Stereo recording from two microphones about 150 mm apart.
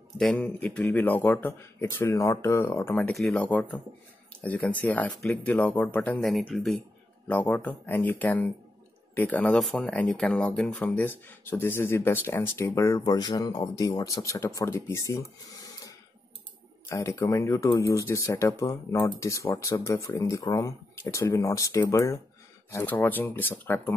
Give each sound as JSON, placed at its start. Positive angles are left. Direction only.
{"t": 0.2, "sound": "speech", "side_deg": 5}
{"t": 6.2, "sound": "speech", "side_deg": 0}
{"t": 16.9, "sound": "speech", "side_deg": 20}